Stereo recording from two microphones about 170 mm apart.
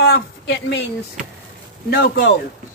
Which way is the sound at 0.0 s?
80° left.